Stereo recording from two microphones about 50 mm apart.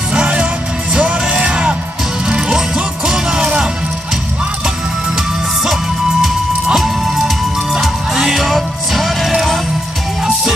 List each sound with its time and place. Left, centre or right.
0.1 s music: right
6.2 s music: centre